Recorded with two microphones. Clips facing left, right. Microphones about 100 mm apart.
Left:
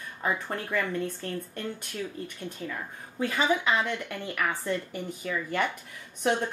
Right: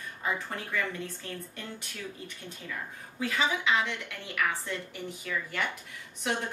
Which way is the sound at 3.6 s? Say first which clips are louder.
Left 2 dB; 45° left (ahead or behind).